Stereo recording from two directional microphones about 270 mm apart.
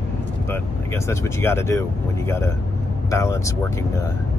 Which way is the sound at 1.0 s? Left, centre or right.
Centre.